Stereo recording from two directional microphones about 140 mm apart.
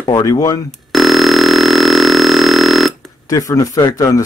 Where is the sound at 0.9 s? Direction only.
Centre (ahead or behind).